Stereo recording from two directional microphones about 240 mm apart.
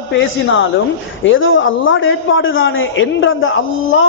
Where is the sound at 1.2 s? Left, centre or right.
Left.